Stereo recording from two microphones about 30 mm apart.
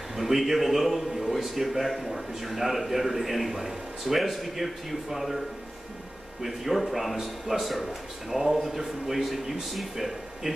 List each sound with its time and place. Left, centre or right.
0.1 s a man's voice: centre
6.4 s a man's voice: centre